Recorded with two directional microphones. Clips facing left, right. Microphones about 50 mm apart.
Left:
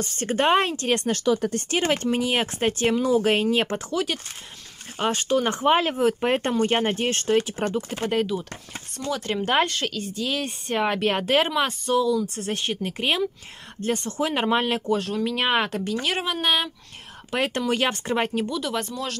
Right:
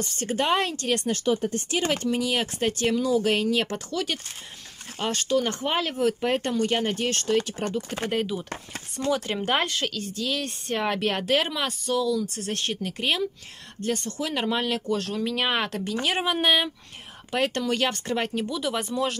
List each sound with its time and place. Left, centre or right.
0.0 s speech: left
1.1 s speech: left
1.7 s speech: left
8.0 s speech: centre; by 14.8 s left
14.9 s speech: centre
15.8 s speech: centre
17.3 s speech: centre
18.4 s speech: centre